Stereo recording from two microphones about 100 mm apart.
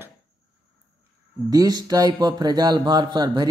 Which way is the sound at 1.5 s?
40° right (ahead or behind).